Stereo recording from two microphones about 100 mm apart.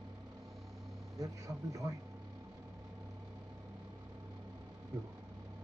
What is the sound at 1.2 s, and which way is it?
Speech, 35° right (ahead or behind).